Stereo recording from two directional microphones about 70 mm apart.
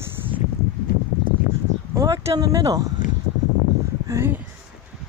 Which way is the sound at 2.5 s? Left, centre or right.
Right.